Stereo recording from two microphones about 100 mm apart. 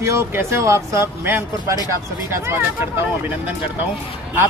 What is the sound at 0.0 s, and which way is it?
Speech, 25° right (ahead or behind).